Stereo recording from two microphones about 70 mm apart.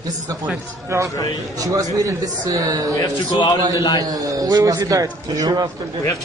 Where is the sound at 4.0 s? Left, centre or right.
Right.